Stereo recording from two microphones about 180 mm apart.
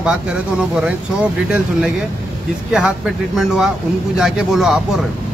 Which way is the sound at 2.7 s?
5° right (ahead or behind).